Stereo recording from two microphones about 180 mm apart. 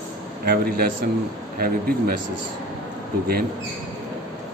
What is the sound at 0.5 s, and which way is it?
Speech, 55° right (ahead or behind).